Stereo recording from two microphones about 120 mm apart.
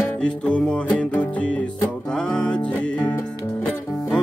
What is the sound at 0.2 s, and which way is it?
Music, 5° left (ahead or behind).